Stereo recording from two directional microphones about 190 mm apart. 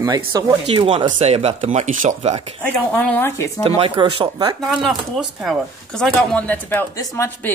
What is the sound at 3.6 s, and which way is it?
Speech, 30° right (ahead or behind).